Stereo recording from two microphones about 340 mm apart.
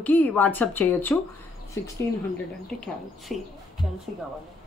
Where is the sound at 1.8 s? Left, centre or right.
Left.